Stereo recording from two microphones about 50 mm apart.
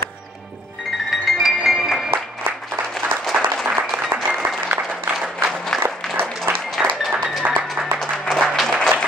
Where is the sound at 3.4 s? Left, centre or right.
Centre.